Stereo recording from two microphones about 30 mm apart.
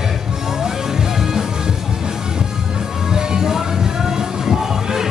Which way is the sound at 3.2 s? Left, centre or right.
Centre.